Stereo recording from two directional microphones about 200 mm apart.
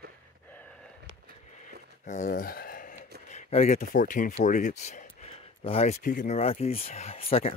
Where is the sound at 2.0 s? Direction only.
40° left (ahead or behind).